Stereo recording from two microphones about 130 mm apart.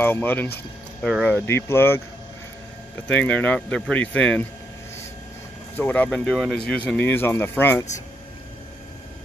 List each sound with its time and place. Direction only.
0.0 s speech: 15° left (ahead or behind)
3.1 s speech: 10° left (ahead or behind)
5.8 s speech: 10° left (ahead or behind)